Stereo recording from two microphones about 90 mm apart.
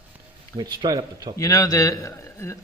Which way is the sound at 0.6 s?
55° right (ahead or behind).